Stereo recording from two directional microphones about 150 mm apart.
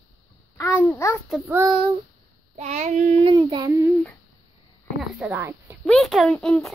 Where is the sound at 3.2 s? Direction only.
30° right (ahead or behind).